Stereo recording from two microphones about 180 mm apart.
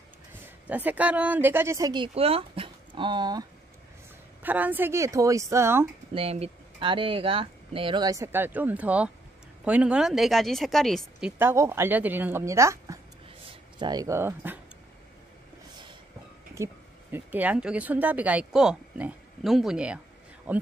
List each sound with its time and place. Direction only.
0.3 s a woman's voice: 10° right (ahead or behind)
4.4 s speech: 10° right (ahead or behind)
6.1 s speech: 30° right (ahead or behind); by 14.6 s 10° right (ahead or behind)
16.5 s speech: 15° right (ahead or behind)